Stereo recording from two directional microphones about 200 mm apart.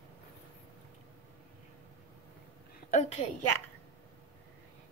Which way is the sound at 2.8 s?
35° left (ahead or behind).